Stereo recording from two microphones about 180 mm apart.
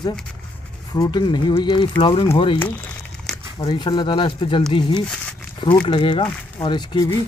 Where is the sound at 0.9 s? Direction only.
25° left (ahead or behind).